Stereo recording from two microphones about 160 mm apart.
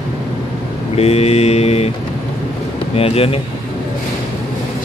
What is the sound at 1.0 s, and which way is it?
Mantra, 40° left (ahead or behind).